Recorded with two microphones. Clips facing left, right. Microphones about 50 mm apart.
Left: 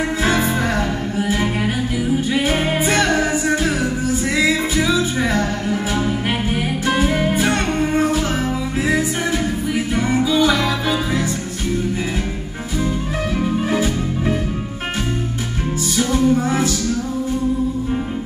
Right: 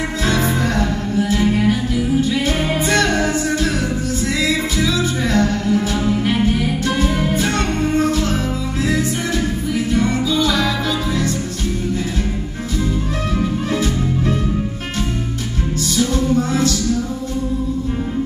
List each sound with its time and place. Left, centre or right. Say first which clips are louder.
0.2 s music: right 1 dB; centre
6.5 s music: even; left
9.8 s music: right 1 dB; centre
13.4 s music: left 1 dB; centre
16.0 s music: left 1 dB; centre